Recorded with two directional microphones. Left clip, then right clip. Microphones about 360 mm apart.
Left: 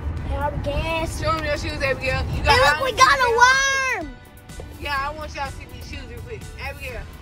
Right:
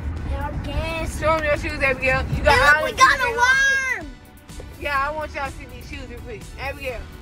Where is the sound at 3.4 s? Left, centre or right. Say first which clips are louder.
Left 1 dB; centre.